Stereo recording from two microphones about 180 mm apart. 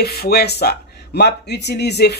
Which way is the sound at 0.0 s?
60° left (ahead or behind).